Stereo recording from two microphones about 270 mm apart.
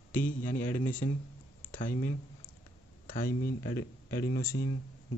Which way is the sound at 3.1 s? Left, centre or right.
Left.